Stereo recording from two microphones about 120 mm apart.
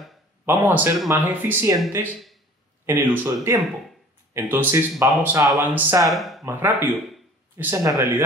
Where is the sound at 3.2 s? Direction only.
25° right (ahead or behind).